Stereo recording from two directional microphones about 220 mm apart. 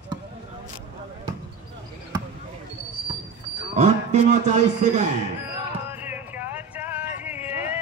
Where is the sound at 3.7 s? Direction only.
30° right (ahead or behind).